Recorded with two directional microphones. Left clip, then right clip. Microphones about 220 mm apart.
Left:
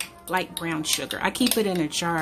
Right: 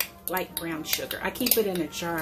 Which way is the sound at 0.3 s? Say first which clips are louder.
Left 6 dB; 50° left (ahead or behind).